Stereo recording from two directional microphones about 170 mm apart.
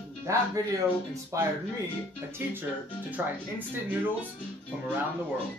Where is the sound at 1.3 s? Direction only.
20° right (ahead or behind).